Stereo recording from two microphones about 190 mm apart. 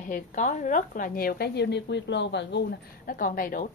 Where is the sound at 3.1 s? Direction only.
45° left (ahead or behind).